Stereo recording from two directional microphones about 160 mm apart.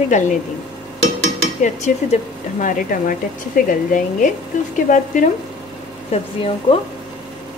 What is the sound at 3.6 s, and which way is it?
Speech, 55° left (ahead or behind).